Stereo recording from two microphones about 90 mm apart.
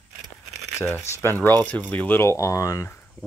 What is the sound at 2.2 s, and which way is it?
Speech, 35° left (ahead or behind).